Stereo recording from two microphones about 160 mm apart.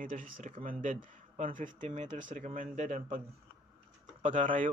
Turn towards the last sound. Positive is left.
turn(degrees=-55)  # may be behind; listen again after turning